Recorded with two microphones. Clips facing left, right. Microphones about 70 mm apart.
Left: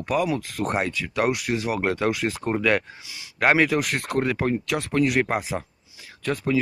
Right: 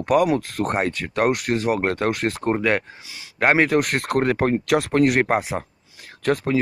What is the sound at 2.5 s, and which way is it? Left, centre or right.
Speech, right.